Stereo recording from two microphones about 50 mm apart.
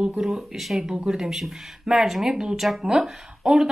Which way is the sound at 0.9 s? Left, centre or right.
Centre.